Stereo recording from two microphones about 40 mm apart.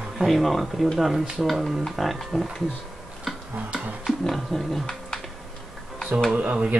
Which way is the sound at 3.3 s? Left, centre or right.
Centre.